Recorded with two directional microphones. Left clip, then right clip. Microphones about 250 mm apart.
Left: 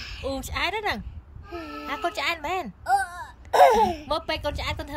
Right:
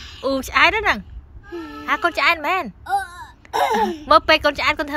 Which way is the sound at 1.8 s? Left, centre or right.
Centre.